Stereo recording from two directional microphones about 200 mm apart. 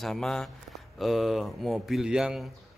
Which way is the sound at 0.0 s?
Centre (ahead or behind).